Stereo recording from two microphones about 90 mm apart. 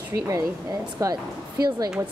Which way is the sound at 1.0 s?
35° right (ahead or behind).